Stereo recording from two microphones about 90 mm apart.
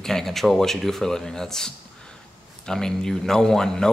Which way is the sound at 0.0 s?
5° left (ahead or behind).